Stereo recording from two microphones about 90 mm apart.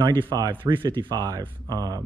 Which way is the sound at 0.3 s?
55° right (ahead or behind).